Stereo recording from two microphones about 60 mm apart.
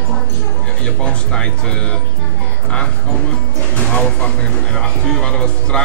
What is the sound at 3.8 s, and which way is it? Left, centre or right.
Speech, centre.